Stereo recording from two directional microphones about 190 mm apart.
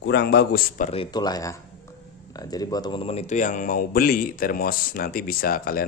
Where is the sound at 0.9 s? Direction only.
25° left (ahead or behind).